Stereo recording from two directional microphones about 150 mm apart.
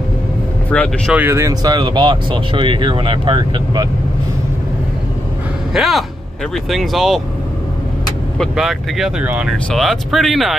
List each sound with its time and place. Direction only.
0.7 s speech: 10° left (ahead or behind)
1.1 s speech: 15° right (ahead or behind)
5.7 s speech: centre (ahead or behind)
8.4 s speech: centre (ahead or behind)